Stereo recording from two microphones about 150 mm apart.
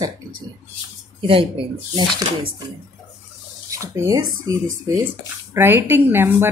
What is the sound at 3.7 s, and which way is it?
A woman's voice, 20° right (ahead or behind).